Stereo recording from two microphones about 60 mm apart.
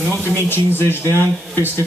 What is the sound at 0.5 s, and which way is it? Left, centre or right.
A man's voice, left.